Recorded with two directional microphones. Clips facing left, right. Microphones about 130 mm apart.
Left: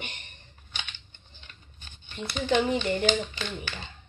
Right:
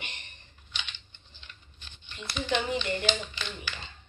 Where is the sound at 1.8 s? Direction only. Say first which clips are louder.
Left 7 dB; 50° left (ahead or behind).